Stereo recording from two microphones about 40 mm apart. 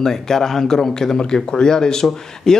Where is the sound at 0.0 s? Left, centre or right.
Centre.